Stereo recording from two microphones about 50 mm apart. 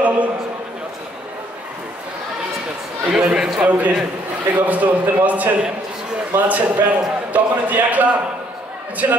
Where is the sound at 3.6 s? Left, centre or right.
Right.